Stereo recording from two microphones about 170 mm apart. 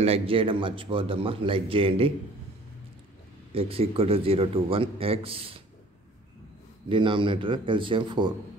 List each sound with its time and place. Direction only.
0.0 s speech: 35° right (ahead or behind)
3.5 s speech: 35° right (ahead or behind)
6.9 s speech: 30° right (ahead or behind)